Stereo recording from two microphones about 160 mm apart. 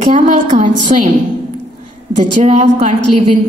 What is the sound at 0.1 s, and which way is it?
Speech, 50° right (ahead or behind).